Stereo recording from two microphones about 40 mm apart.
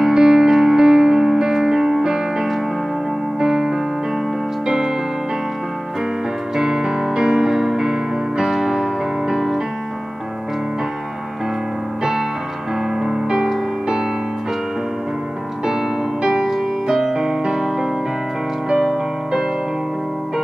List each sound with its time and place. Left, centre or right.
0.0 s music: centre
6.5 s music: centre
12.0 s music: centre
15.6 s music: centre